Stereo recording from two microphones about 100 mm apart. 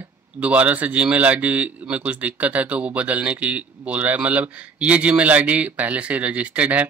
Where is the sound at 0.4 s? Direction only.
15° right (ahead or behind).